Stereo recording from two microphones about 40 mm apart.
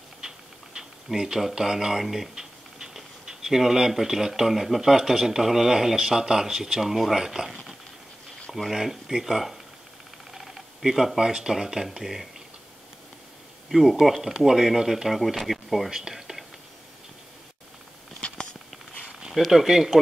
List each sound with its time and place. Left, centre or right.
0.2 s a sound: centre
0.7 s speech: centre
2.3 s typing: centre
3.3 s speech: centre
13.7 s speech: centre
15.9 s speech: centre
18.2 s a sound: left
19.3 s speech: centre